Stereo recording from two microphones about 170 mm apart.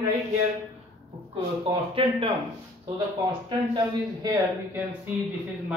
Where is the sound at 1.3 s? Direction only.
30° right (ahead or behind).